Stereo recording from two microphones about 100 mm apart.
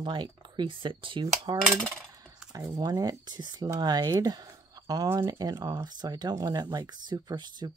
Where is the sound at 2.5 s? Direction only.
40° right (ahead or behind).